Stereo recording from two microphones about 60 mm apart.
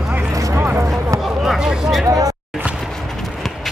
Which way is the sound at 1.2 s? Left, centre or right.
Centre.